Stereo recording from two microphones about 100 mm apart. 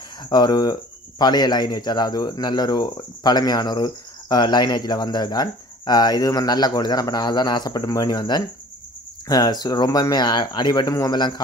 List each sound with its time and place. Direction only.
0.3 s speech: 45° left (ahead or behind)